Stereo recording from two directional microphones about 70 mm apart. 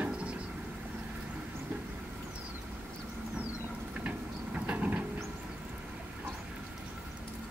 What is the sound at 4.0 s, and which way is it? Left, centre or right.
Vehicle, centre.